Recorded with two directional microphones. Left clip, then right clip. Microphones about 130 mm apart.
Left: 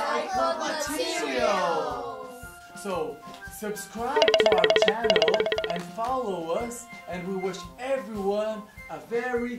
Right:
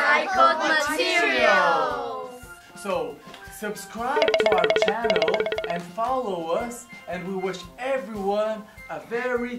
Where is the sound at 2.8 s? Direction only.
5° left (ahead or behind).